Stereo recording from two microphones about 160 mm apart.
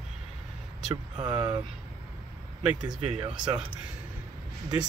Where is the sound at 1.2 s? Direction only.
5° right (ahead or behind).